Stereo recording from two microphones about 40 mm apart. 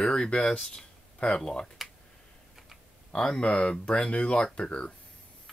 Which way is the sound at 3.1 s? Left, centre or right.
Left.